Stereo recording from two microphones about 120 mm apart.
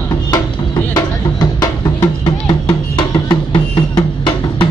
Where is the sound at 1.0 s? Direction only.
30° left (ahead or behind).